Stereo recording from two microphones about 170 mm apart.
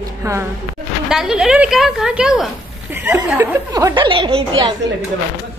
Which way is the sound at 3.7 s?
20° right (ahead or behind).